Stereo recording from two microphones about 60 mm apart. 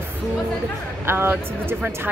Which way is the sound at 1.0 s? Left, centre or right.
Right.